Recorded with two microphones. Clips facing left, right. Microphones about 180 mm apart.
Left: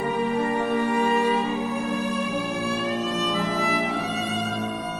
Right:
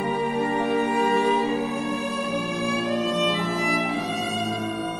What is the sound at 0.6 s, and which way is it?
Music, 20° right (ahead or behind).